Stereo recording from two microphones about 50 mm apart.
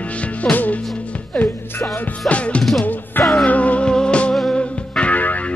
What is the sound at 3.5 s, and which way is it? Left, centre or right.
Music, left.